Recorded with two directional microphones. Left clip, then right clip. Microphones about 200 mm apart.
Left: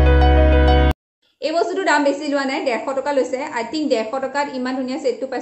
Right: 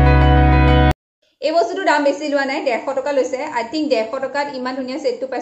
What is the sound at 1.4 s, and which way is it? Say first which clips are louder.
A woman's voice: right 3 dB; centre (ahead or behind).